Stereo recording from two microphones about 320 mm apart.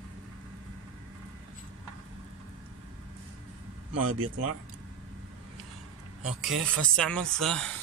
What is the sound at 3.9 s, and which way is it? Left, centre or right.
Speech, right.